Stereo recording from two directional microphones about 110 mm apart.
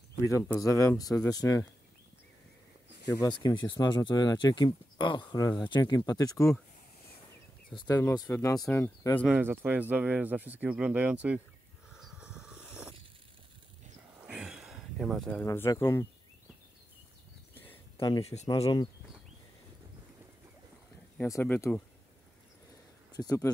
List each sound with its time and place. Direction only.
0.6 s speech: 30° left (ahead or behind)
3.1 s speech: 35° left (ahead or behind)
7.7 s speech: 40° left (ahead or behind)
8.1 s speech: 30° left (ahead or behind)
9.3 s speech: 20° right (ahead or behind)
11.9 s vehicle: 5° right (ahead or behind)
14.2 s a sound: 10° right (ahead or behind)
15.4 s speech: 25° left (ahead or behind)
18.2 s speech: 85° left
21.3 s speech: 25° left (ahead or behind)
23.1 s speech: 30° left (ahead or behind)